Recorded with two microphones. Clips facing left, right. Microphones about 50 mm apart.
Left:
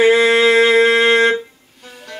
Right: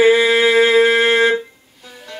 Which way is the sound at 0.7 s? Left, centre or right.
Left.